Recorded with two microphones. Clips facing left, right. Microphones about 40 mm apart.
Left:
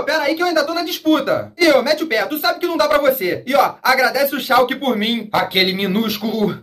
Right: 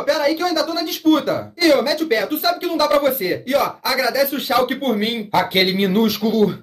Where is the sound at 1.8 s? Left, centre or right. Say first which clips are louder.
Left 1 dB; left.